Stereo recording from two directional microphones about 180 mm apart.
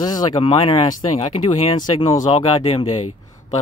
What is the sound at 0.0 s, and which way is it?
Speech, 20° left (ahead or behind).